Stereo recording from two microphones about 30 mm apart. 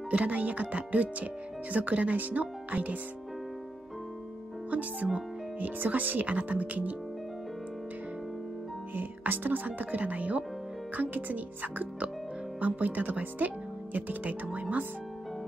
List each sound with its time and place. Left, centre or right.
0.1 s speech: right
2.1 s speech: right
5.6 s speech: right
8.9 s speech: right
11.0 s speech: right
13.4 s speech: right
13.9 s speech: right